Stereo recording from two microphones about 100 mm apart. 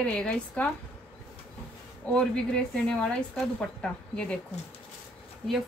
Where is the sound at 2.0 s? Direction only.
10° left (ahead or behind).